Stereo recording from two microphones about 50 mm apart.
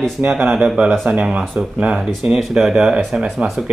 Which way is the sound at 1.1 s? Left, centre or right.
Right.